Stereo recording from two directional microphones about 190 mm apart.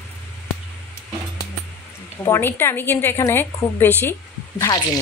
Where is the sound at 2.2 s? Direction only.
15° left (ahead or behind).